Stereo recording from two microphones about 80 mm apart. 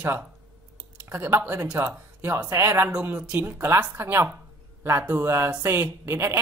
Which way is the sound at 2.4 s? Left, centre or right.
Right.